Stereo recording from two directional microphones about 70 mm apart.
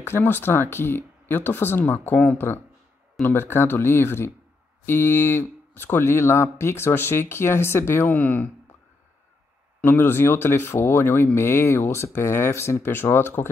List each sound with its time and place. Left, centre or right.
0.0 s speech: left
3.3 s speech: left
8.1 s speech: left
9.8 s speech: left